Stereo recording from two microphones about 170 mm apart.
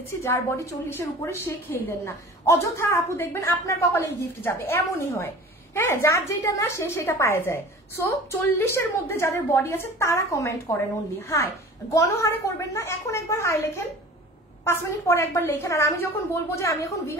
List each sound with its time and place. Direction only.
0.8 s a woman's voice: 15° left (ahead or behind)